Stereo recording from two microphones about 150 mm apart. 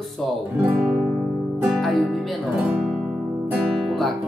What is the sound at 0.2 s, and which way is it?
Speech, centre (ahead or behind).